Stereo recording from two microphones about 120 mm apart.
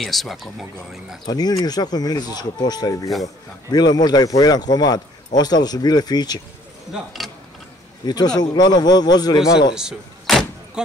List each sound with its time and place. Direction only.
0.0 s speech: centre (ahead or behind)
1.2 s a man's voice: 35° left (ahead or behind)
8.0 s a man's voice: 35° left (ahead or behind)
9.8 s vehicle: centre (ahead or behind)